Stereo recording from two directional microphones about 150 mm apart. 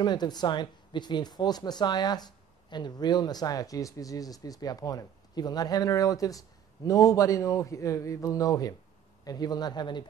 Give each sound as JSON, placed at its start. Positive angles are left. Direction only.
{"t": 0.0, "sound": "speech", "side_deg": 30}